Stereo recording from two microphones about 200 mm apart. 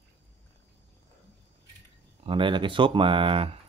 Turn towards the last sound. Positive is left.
turn(degrees=-25)  # may be behind; listen again after turning